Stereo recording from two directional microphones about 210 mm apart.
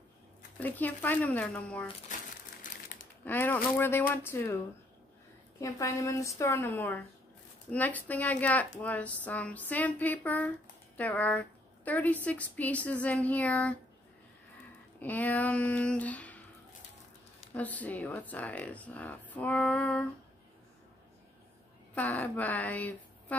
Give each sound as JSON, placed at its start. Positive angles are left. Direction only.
{"t": 0.6, "sound": "a woman's voice", "side_deg": 10}
{"t": 2.6, "sound": "crumpling", "side_deg": 40}
{"t": 3.3, "sound": "a woman's voice", "side_deg": 10}
{"t": 5.6, "sound": "a woman's voice", "side_deg": 15}
{"t": 15.0, "sound": "a woman's voice", "side_deg": 10}
{"t": 17.6, "sound": "a woman's voice", "side_deg": 5}
{"t": 21.9, "sound": "speech", "side_deg": 5}